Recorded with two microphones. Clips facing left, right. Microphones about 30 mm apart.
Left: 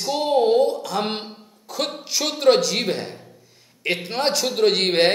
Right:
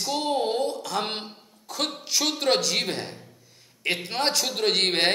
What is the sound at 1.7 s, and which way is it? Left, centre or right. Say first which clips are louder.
Speech: left 2 dB; centre.